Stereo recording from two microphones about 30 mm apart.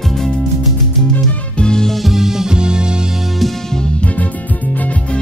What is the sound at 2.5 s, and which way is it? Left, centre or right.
Music, right.